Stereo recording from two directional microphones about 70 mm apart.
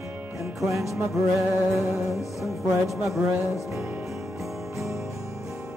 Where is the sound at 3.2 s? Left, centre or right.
Right.